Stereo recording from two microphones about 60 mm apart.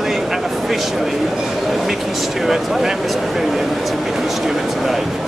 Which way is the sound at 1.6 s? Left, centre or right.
Centre.